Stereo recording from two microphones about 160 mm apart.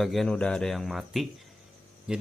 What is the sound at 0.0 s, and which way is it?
A man's voice, centre (ahead or behind).